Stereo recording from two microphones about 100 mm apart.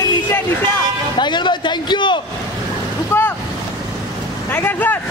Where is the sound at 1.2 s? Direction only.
50° left (ahead or behind).